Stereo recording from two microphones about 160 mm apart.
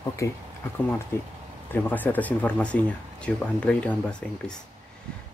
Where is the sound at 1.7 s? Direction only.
10° left (ahead or behind).